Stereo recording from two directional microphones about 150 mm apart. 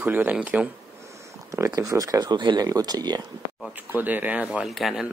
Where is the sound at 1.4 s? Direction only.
20° right (ahead or behind).